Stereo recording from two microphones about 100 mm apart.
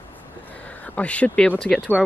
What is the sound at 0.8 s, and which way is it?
Speech, 15° left (ahead or behind).